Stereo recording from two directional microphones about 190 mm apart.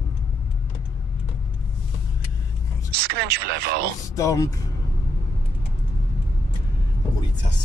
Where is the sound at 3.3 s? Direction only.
55° right (ahead or behind).